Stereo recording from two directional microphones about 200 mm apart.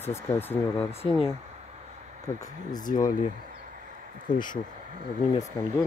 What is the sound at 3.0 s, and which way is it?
Speech, 40° left (ahead or behind).